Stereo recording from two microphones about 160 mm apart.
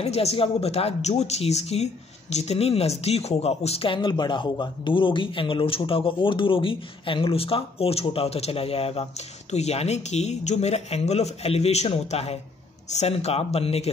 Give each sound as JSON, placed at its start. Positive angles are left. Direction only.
{"t": 0.0, "sound": "speech", "side_deg": 40}